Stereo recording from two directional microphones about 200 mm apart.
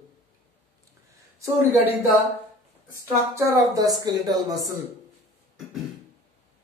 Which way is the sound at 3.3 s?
15° right (ahead or behind).